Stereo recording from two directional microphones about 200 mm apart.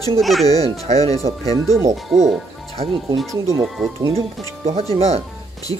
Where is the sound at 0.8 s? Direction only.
30° right (ahead or behind).